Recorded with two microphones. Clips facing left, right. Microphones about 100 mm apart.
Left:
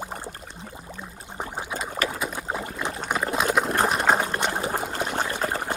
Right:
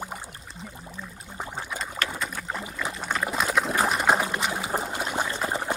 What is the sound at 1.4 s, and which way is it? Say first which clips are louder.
Pour: left 2 dB; 15° left (ahead or behind).